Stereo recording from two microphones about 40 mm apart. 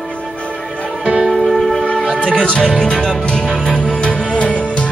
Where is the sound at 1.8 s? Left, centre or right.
Left.